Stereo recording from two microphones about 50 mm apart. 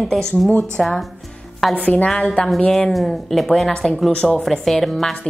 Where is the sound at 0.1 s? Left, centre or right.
Centre.